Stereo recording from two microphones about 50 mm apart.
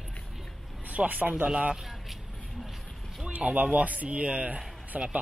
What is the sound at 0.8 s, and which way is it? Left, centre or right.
Speech, right.